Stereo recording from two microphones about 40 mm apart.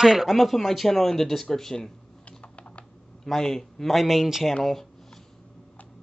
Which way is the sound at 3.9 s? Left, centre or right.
Centre.